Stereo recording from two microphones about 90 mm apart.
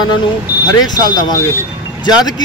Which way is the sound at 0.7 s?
50° left (ahead or behind).